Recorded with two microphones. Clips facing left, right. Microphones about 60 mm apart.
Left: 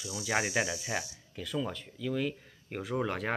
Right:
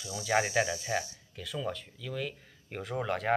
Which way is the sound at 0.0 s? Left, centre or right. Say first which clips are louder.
Right 3 dB; centre.